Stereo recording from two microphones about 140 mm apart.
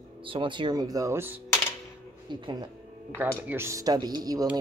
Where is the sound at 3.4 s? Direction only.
20° right (ahead or behind).